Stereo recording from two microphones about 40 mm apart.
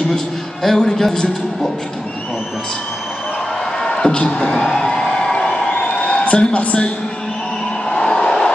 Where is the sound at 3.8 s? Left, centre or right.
Centre.